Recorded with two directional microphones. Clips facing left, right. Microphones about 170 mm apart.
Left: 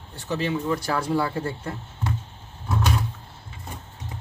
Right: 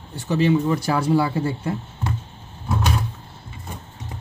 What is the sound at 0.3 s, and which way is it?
A man's voice, 5° right (ahead or behind).